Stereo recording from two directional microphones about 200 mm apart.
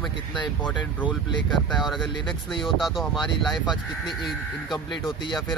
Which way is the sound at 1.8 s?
Centre (ahead or behind).